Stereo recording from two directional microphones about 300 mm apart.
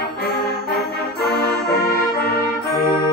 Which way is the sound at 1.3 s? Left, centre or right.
Left.